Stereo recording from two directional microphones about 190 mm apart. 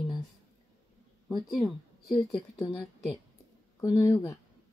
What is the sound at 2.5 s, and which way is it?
Speech, 15° left (ahead or behind).